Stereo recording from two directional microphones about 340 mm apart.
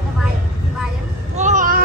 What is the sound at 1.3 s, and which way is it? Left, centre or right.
Vehicle, right.